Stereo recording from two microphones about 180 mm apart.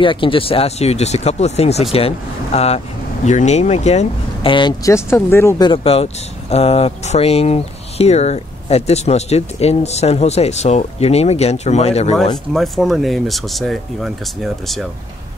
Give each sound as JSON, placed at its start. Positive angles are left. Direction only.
{"t": 0.0, "sound": "speech", "side_deg": 30}
{"t": 5.7, "sound": "speech", "side_deg": 35}
{"t": 12.5, "sound": "speech", "side_deg": 0}